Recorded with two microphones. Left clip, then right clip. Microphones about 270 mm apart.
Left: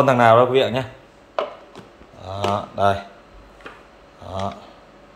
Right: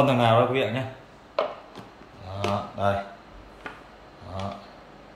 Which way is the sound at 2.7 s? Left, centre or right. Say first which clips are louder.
Left 7 dB; left.